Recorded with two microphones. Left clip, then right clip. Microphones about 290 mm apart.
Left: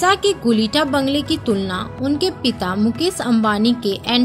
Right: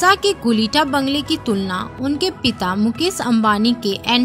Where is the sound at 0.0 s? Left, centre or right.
Right.